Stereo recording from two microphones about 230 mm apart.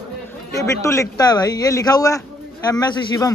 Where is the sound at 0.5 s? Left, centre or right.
Centre.